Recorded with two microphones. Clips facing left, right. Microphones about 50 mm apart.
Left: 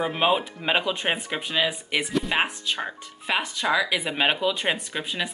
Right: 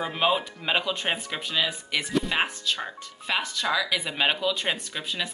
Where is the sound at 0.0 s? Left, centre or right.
Centre.